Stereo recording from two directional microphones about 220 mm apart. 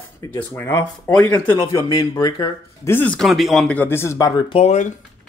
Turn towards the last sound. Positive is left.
turn(degrees=30)  # may be behind; listen again after turning